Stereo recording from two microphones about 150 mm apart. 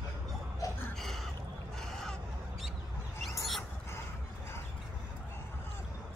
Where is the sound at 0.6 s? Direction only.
20° left (ahead or behind).